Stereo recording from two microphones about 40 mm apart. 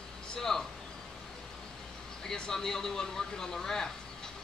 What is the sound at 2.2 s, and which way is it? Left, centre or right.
Speech, centre.